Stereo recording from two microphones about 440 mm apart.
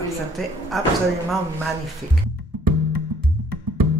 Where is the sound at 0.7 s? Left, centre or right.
Centre.